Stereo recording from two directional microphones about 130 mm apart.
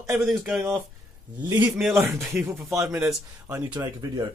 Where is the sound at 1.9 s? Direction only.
20° right (ahead or behind).